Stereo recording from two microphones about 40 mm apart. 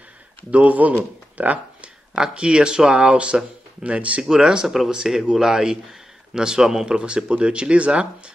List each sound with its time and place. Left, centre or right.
0.5 s speech: right
2.1 s speech: right
4.2 s speech: centre
6.9 s speech: right